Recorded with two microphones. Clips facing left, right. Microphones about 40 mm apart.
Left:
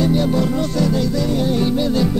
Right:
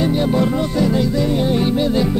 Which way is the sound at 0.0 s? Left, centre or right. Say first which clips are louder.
Right 1 dB; centre.